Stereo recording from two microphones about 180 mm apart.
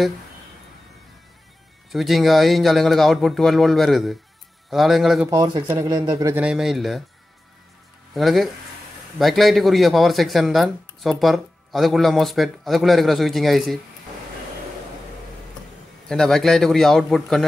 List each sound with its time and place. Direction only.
1.9 s a man's voice: centre (ahead or behind)
5.3 s speech: 20° right (ahead or behind)
6.4 s a man's voice: 5° right (ahead or behind)
8.1 s a man's voice: centre (ahead or behind)
16.1 s a man's voice: centre (ahead or behind)